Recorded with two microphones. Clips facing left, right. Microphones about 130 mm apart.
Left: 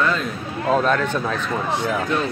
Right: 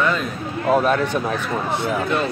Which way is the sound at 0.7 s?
10° right (ahead or behind).